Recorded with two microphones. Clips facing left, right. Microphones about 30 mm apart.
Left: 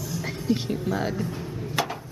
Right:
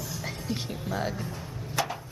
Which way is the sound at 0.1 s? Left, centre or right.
Centre.